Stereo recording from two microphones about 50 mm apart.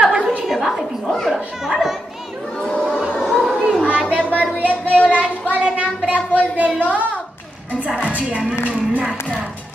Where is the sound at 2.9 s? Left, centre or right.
Centre.